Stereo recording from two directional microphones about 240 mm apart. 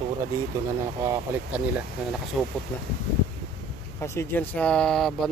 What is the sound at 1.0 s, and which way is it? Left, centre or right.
Speech, centre.